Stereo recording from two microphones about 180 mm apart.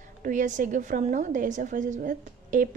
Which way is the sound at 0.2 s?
45° right (ahead or behind).